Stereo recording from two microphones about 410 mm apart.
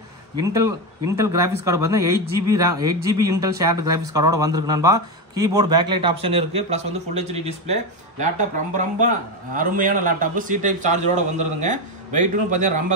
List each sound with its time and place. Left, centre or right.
0.4 s speech: centre